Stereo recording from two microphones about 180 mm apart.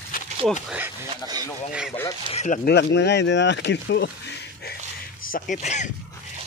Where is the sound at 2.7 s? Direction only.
75° left (ahead or behind).